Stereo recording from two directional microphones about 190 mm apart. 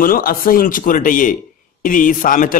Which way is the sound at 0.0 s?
50° left (ahead or behind).